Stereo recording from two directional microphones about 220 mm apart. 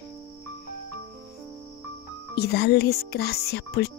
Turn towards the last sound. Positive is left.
turn(degrees=45)  # may be behind; listen again after turning